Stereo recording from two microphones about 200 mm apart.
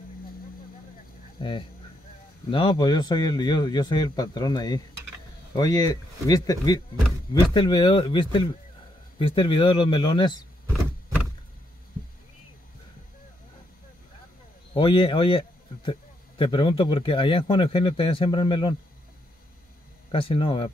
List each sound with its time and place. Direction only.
1.4 s a man's voice: 25° left (ahead or behind)
14.7 s a man's voice: 25° left (ahead or behind)
20.1 s a man's voice: 25° left (ahead or behind)